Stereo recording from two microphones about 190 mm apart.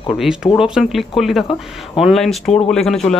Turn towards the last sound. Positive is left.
turn(degrees=0)  # may be behind; listen again after turning